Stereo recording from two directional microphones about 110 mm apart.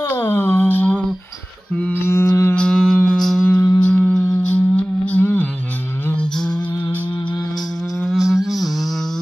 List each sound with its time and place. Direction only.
0.0 s a sound: 20° left (ahead or behind)
2.0 s music: 25° left (ahead or behind)
2.5 s music: 5° left (ahead or behind)
8.1 s music: 5° right (ahead or behind)